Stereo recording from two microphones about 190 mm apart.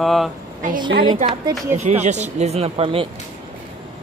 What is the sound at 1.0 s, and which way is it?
Speech, 30° right (ahead or behind).